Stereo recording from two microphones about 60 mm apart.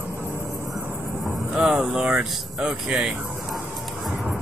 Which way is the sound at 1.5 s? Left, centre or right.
Centre.